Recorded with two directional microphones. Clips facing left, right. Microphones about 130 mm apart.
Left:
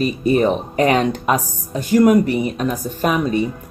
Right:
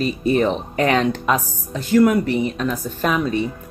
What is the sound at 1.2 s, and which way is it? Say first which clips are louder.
Speech: left 1 dB; 15° left (ahead or behind).